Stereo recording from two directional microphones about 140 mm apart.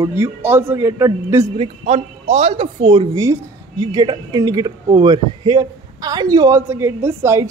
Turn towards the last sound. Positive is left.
turn(degrees=-20)  # may be behind; listen again after turning